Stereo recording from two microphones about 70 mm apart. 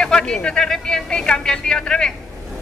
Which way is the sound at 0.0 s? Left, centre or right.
Centre.